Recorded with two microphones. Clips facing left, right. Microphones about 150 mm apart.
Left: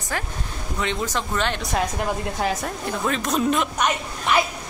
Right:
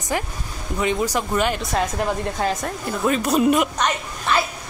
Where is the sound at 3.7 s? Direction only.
15° left (ahead or behind).